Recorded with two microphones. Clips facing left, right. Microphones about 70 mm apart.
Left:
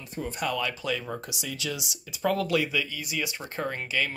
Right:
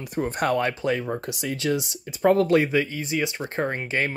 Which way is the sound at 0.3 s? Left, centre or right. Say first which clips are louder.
Right 6 dB; right.